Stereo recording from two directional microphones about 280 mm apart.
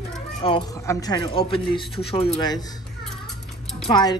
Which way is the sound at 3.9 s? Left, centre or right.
Centre.